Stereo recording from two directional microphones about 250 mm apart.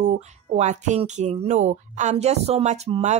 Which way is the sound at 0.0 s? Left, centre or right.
Right.